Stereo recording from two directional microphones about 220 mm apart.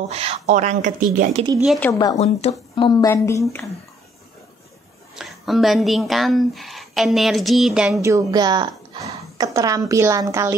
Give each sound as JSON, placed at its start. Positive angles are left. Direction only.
{"t": 0.1, "sound": "speech", "side_deg": -30}
{"t": 1.6, "sound": "speech", "side_deg": 0}
{"t": 1.9, "sound": "speech", "side_deg": 15}
{"t": 2.1, "sound": "speech", "side_deg": 30}
{"t": 5.1, "sound": "speech", "side_deg": 0}
{"t": 8.0, "sound": "a woman's voice", "side_deg": -15}